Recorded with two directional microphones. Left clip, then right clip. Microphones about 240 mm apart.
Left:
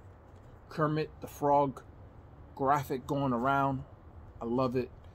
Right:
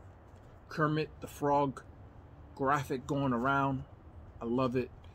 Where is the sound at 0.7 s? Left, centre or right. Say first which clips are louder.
Left 1 dB; centre.